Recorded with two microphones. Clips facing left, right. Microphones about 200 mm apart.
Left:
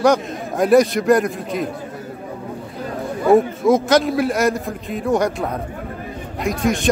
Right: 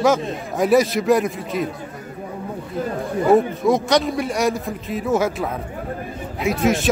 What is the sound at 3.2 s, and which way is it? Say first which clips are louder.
A man's voice: left 2 dB; centre (ahead or behind).